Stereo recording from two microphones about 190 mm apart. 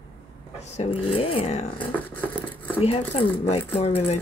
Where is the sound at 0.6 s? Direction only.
35° left (ahead or behind).